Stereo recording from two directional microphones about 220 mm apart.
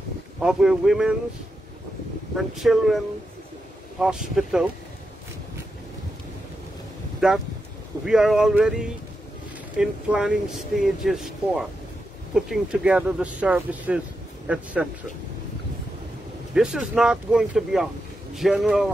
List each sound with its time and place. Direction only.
0.4 s speech: 5° right (ahead or behind)
2.3 s speech: centre (ahead or behind)
4.0 s speech: 5° right (ahead or behind)
7.2 s speech: 5° right (ahead or behind)
16.5 s speech: 5° right (ahead or behind)